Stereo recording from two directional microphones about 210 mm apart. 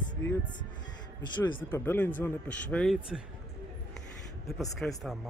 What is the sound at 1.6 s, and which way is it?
Speech, 10° left (ahead or behind).